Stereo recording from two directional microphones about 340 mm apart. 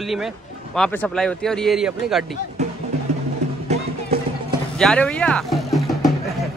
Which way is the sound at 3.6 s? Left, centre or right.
Centre.